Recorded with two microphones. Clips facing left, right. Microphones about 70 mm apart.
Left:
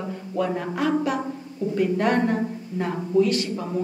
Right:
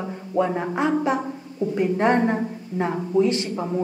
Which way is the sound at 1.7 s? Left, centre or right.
Right.